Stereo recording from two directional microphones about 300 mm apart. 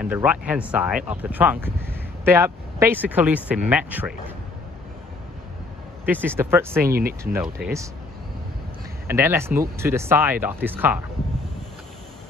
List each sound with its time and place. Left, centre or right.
0.0 s speech: centre
6.2 s speech: centre
6.8 s speech: right
7.6 s speech: centre
9.0 s speech: centre